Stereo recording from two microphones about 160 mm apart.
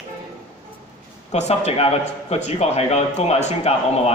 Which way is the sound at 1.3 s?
40° left (ahead or behind).